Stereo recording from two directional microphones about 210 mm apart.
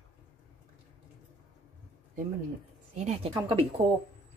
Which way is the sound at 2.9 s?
30° right (ahead or behind).